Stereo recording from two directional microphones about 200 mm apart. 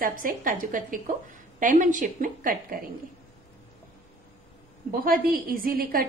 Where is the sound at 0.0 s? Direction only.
45° right (ahead or behind).